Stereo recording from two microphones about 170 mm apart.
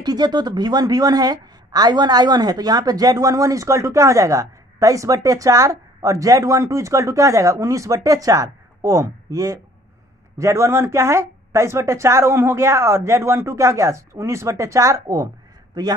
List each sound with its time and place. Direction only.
0.0 s speech: 25° right (ahead or behind)